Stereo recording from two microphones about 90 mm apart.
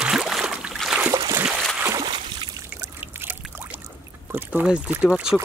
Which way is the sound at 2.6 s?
30° right (ahead or behind).